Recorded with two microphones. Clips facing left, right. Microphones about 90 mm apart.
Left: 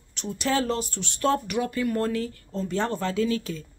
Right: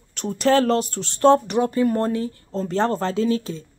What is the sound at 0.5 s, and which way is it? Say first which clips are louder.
Speech: right 6 dB; 60° right (ahead or behind).